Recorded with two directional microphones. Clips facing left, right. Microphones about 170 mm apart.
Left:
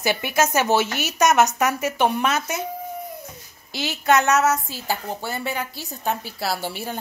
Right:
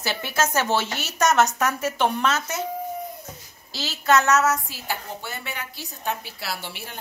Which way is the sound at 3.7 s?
15° left (ahead or behind).